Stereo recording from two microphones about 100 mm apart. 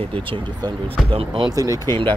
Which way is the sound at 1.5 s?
35° right (ahead or behind).